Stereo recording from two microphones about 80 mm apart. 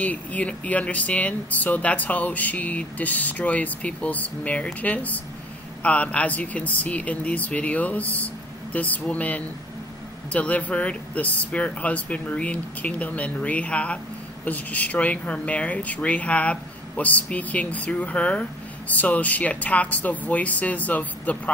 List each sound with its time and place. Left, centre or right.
0.0 s speech: centre